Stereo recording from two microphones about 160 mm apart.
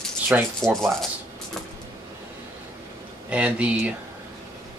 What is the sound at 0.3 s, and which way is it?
Speech, 10° right (ahead or behind).